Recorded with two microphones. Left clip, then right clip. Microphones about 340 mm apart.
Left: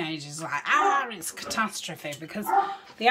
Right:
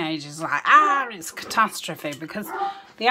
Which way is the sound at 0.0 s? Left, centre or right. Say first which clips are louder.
Right 5 dB; centre.